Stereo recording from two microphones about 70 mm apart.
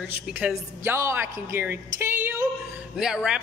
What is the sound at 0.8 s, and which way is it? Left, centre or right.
Speech, right.